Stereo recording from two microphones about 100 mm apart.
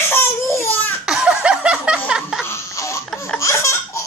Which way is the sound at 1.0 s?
10° right (ahead or behind).